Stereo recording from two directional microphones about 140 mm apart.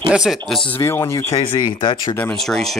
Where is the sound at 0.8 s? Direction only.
20° left (ahead or behind).